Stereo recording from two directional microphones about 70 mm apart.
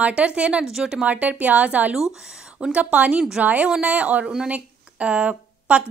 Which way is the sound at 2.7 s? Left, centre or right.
Right.